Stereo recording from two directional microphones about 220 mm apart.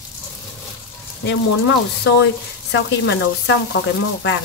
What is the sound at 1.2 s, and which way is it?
Speech, 55° left (ahead or behind).